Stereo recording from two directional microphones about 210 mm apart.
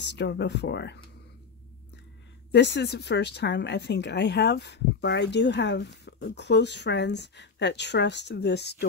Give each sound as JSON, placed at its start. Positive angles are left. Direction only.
{"t": 0.1, "sound": "speech", "side_deg": 55}
{"t": 2.5, "sound": "speech", "side_deg": 55}